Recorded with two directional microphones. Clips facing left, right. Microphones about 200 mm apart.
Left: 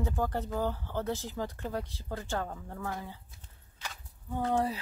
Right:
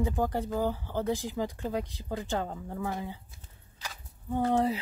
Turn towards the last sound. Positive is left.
turn(degrees=-20)  # may be behind; listen again after turning